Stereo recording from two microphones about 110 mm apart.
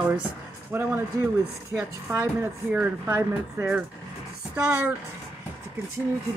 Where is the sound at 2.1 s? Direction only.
20° right (ahead or behind).